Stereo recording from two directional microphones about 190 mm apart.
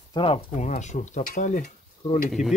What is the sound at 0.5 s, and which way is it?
Stir, 40° left (ahead or behind).